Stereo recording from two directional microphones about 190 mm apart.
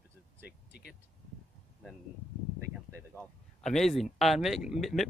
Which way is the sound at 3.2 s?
Centre (ahead or behind).